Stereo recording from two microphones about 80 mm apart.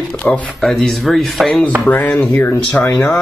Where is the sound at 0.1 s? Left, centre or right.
Centre.